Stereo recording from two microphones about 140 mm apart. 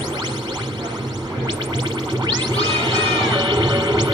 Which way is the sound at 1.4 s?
35° right (ahead or behind).